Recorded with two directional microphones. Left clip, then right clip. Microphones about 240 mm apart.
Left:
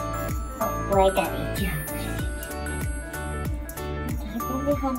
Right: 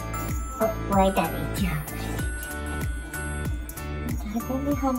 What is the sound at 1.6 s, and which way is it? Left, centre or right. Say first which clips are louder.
Music: left 1 dB; right.